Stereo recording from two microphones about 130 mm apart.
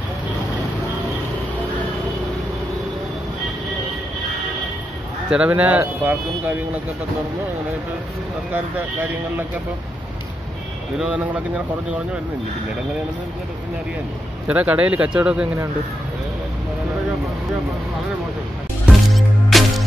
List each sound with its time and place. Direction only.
5.3 s speech: 10° right (ahead or behind)
11.0 s speech: 10° right (ahead or behind)
14.5 s speech: 10° right (ahead or behind)
18.9 s music: centre (ahead or behind)